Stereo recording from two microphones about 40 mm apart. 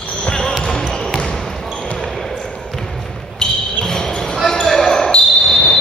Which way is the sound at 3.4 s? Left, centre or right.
Centre.